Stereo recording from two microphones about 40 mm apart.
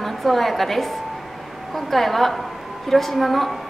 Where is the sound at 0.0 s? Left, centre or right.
Centre.